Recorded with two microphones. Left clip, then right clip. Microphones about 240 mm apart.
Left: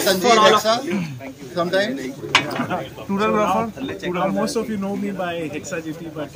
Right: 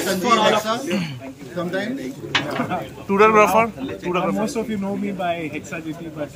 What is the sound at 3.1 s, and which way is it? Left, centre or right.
Speech, right.